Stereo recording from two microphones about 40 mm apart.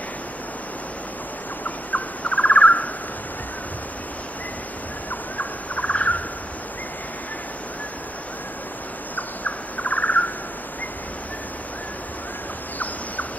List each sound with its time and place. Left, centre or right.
1.6 s owl: left
5.4 s bird: left
9.1 s bird: left